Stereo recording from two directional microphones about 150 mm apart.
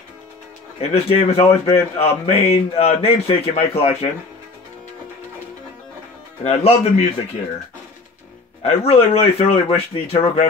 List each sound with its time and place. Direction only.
0.7 s speech: 45° left (ahead or behind)
6.4 s speech: 45° left (ahead or behind)
8.6 s speech: 45° left (ahead or behind)